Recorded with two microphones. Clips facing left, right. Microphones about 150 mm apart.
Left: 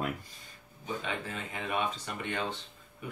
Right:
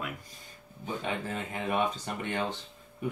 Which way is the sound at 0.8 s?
45° right (ahead or behind).